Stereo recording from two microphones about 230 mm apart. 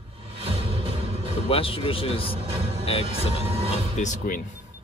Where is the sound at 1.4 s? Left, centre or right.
Left.